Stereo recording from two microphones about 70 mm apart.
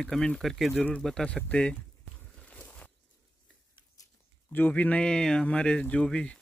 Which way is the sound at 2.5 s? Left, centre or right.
Left.